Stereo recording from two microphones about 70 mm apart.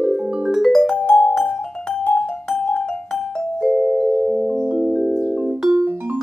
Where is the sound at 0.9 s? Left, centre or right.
Centre.